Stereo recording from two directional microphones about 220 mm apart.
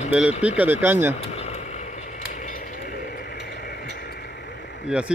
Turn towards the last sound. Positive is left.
turn(degrees=-5)  # may be behind; listen again after turning